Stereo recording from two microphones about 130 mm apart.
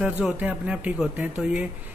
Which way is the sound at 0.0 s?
10° right (ahead or behind).